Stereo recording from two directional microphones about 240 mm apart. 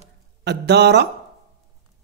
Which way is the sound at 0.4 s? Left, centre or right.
Right.